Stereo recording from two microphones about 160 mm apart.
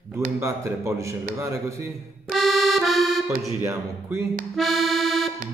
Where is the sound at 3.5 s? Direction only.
15° right (ahead or behind).